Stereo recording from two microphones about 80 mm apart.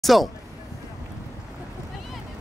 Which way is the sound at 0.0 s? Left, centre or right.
Centre.